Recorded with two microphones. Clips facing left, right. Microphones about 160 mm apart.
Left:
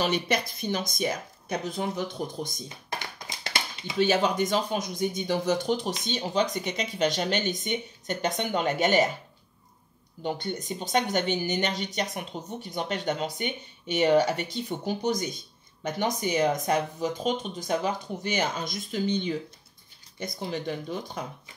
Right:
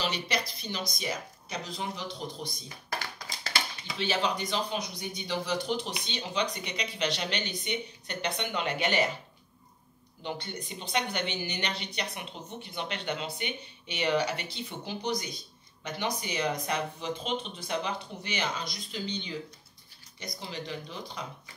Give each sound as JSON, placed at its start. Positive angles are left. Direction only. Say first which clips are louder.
{"t": 0.0, "sound": "a woman's voice", "louder": "left 6 dB", "side_deg": 50}
{"t": 2.7, "sound": "a sound", "louder": "left 1 dB", "side_deg": 20}
{"t": 4.0, "sound": "a woman's voice", "louder": "left 7 dB", "side_deg": 50}
{"t": 10.2, "sound": "a woman's voice", "louder": "left 6 dB", "side_deg": 45}